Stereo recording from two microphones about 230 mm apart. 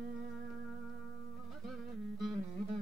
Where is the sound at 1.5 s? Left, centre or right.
Centre.